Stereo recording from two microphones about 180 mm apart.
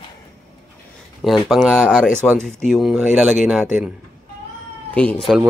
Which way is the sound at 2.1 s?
10° right (ahead or behind).